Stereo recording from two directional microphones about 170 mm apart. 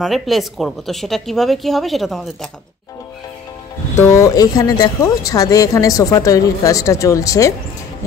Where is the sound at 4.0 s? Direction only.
15° left (ahead or behind).